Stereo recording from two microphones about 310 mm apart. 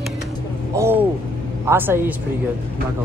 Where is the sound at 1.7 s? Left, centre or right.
Centre.